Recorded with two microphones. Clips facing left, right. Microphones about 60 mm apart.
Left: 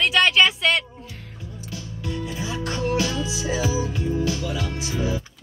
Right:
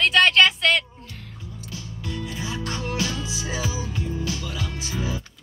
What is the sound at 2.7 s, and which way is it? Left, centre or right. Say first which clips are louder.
Music: left 6 dB; left.